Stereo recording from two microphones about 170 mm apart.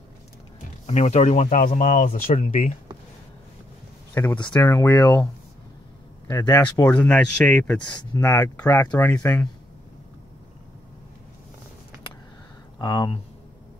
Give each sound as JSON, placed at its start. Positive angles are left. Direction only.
{"t": 0.8, "sound": "speech", "side_deg": 40}
{"t": 4.1, "sound": "speech", "side_deg": 15}
{"t": 8.2, "sound": "speech", "side_deg": 20}
{"t": 12.8, "sound": "speech", "side_deg": 25}